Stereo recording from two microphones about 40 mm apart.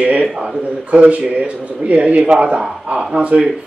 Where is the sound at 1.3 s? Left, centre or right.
Right.